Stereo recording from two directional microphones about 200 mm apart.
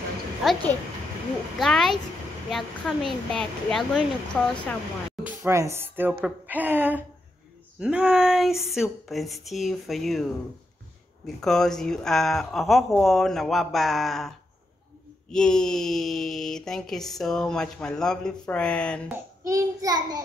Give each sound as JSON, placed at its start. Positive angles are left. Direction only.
{"t": 0.4, "sound": "speech", "side_deg": 0}
{"t": 1.6, "sound": "speech", "side_deg": 0}
{"t": 5.2, "sound": "a woman's voice", "side_deg": -15}
{"t": 15.3, "sound": "speech", "side_deg": 5}
{"t": 19.0, "sound": "a woman's voice", "side_deg": -15}